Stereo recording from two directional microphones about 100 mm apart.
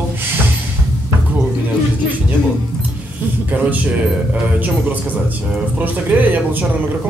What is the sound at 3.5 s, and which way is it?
Speech, 15° right (ahead or behind).